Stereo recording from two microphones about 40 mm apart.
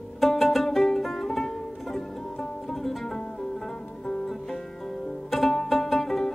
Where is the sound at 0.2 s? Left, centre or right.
Centre.